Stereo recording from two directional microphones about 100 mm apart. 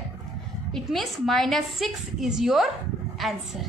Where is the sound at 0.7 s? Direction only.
Centre (ahead or behind).